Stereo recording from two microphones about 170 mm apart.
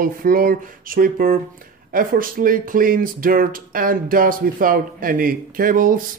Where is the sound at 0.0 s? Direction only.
55° right (ahead or behind).